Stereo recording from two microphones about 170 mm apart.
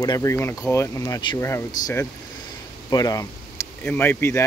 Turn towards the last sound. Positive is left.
turn(degrees=15)  # may be behind; listen again after turning